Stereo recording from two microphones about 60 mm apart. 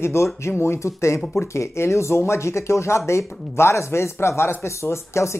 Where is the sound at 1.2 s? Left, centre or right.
Centre.